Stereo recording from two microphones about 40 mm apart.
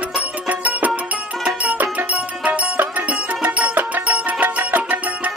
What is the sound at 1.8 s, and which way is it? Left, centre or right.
Music, right.